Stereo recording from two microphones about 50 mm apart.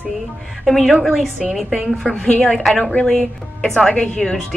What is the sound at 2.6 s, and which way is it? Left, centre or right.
Speech, centre.